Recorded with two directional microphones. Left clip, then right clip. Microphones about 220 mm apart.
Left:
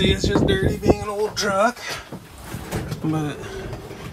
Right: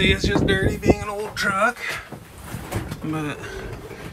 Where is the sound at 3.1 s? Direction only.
15° left (ahead or behind).